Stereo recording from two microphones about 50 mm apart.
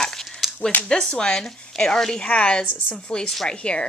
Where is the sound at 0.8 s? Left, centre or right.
Centre.